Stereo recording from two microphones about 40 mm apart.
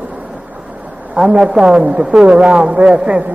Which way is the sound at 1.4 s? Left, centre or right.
Centre.